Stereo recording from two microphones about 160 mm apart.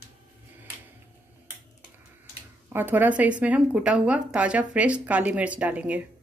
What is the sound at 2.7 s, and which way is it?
A woman's voice, 10° right (ahead or behind).